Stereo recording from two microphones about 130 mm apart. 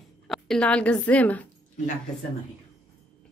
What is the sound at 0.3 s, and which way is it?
A woman's voice, 5° left (ahead or behind).